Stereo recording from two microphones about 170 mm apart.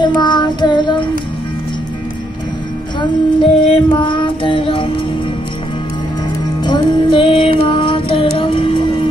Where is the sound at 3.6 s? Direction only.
30° left (ahead or behind).